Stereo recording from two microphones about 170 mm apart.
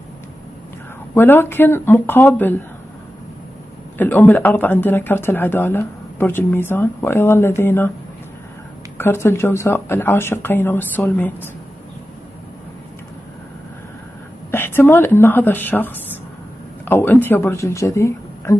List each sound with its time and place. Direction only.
1.1 s speech: 10° left (ahead or behind)
4.0 s speech: 10° left (ahead or behind)
8.9 s speech: 15° left (ahead or behind)
14.5 s a woman's voice: 15° left (ahead or behind)